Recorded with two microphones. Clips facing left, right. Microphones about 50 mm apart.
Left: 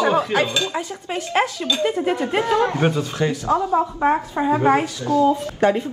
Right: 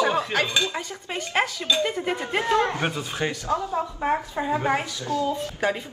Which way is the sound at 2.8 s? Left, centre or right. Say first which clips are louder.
Left 6 dB; centre.